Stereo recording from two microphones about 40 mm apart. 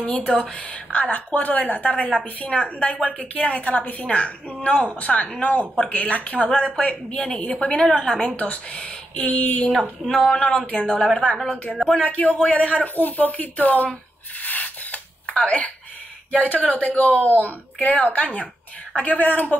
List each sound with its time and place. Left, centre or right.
0.0 s a woman's voice: left
1.4 s a woman's voice: left
7.5 s speech: left
8.4 s a woman's voice: left
9.7 s speech: left
10.3 s a woman's voice: left
10.9 s speech: centre
11.9 s a woman's voice: left
12.8 s speech: left
14.4 s rub: left
16.4 s a woman's voice: left